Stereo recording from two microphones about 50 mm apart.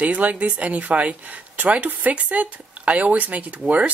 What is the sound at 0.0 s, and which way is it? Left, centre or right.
A woman's voice, right.